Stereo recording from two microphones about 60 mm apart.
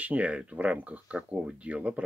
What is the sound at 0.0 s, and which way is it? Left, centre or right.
Speech, right.